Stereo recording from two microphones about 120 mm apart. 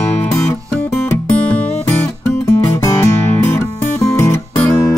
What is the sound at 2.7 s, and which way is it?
Music, 25° left (ahead or behind).